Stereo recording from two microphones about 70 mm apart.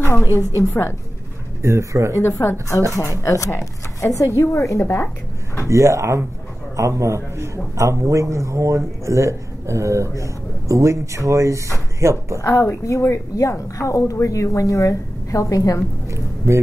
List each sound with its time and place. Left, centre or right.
0.6 s a woman's voice: left
1.6 s speech: right
2.1 s a woman's voice: left
5.7 s speech: right
12.4 s a woman's voice: left